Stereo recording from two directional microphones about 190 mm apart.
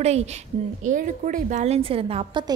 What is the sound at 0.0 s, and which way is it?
A woman's voice, 35° right (ahead or behind).